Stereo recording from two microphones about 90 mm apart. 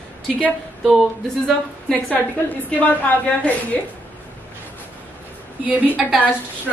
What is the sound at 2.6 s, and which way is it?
Speech, 15° left (ahead or behind).